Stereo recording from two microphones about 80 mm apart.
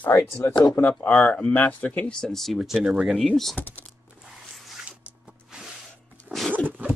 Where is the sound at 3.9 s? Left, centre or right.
Centre.